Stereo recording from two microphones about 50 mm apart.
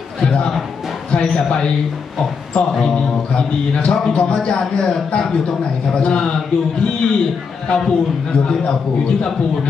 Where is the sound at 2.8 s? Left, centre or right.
Centre.